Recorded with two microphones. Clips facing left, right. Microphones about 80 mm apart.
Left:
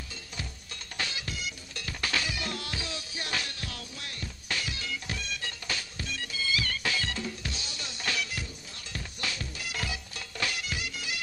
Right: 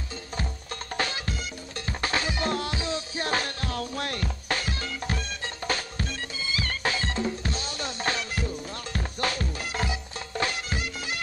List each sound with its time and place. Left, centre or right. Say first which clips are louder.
0.9 s music: right 6 dB; right
4.5 s music: right 3 dB; right
8.5 s music: right 11 dB; right